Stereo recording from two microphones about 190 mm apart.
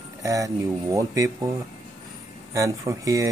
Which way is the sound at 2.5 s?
15° right (ahead or behind).